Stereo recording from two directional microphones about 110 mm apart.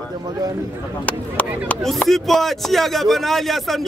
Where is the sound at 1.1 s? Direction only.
10° left (ahead or behind).